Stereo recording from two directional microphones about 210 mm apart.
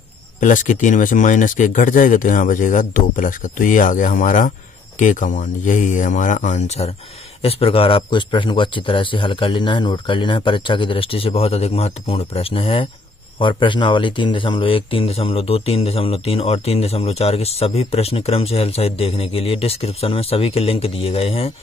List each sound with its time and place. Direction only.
0.4 s speech: 40° left (ahead or behind)